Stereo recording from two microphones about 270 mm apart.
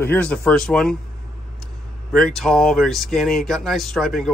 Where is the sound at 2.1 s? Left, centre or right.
Centre.